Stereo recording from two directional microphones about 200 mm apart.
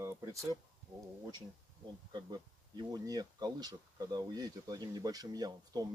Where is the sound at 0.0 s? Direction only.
15° right (ahead or behind).